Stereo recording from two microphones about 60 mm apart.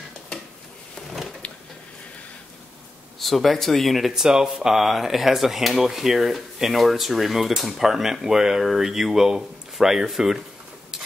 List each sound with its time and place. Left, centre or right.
1.4 s a sound: left
3.2 s speech: centre
4.1 s speech: centre